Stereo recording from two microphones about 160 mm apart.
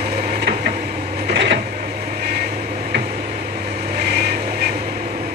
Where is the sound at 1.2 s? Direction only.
90° right.